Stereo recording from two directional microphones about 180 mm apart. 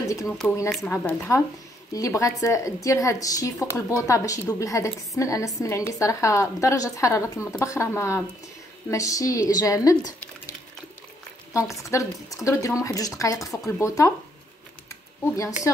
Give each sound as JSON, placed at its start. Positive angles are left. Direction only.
{"t": 0.4, "sound": "a woman's voice", "side_deg": 5}
{"t": 11.5, "sound": "a woman's voice", "side_deg": 15}
{"t": 14.9, "sound": "a sound", "side_deg": 15}